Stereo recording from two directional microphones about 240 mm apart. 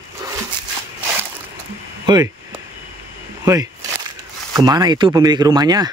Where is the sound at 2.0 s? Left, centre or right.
Centre.